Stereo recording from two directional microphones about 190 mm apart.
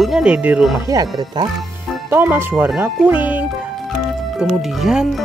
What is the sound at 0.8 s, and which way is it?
Speech, 20° right (ahead or behind).